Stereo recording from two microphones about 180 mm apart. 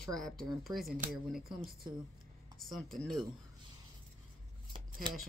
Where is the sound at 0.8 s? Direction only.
50° right (ahead or behind).